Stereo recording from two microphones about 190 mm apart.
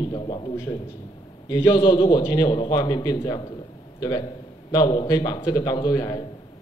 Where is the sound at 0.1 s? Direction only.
20° left (ahead or behind).